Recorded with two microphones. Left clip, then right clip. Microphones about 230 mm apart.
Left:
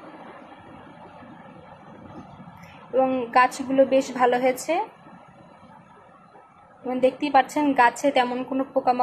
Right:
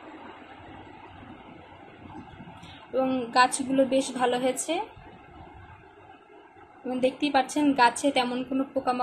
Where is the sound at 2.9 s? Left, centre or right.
Centre.